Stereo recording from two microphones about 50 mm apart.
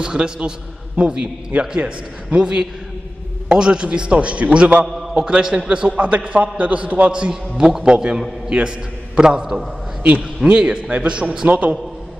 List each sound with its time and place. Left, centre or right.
0.0 s a man's voice: centre
4.8 s a man's voice: centre
10.0 s a man's voice: right
11.4 s a man's voice: right